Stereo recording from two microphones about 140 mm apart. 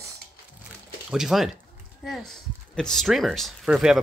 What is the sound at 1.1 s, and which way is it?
Speech, centre (ahead or behind).